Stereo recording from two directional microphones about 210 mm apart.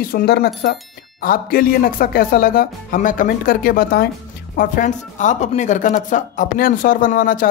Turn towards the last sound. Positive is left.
turn(degrees=40)  # may be behind; listen again after turning